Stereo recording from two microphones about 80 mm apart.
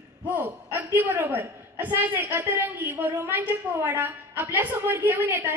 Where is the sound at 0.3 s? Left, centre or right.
Right.